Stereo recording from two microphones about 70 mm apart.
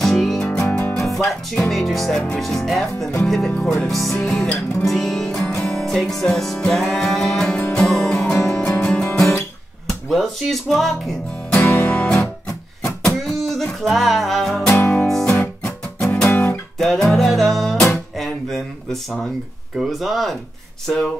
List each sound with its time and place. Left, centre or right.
0.0 s music: centre
0.5 s music: centre
0.9 s music: centre
1.7 s speech: centre
4.2 s music: centre
9.8 s speech: centre
11.5 s music: left
13.0 s music: centre
14.8 s music: left
15.6 s music: centre
16.3 s guitar: left
16.7 s music: centre
18.1 s a sound: centre
19.8 s speech: centre